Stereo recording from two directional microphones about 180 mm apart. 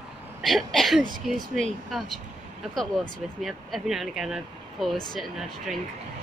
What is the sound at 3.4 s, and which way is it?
Speech, centre (ahead or behind).